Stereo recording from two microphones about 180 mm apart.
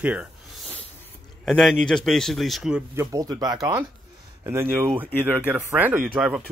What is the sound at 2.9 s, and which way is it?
Speech, 15° right (ahead or behind).